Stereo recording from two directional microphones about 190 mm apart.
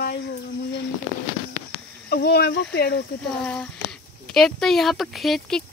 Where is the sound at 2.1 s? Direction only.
55° left (ahead or behind).